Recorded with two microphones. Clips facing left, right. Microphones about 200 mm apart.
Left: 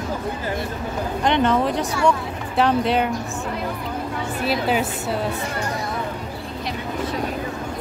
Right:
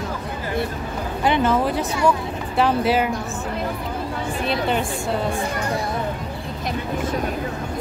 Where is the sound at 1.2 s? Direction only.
5° right (ahead or behind).